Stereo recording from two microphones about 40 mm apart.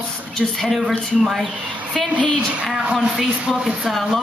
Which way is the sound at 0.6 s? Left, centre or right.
Centre.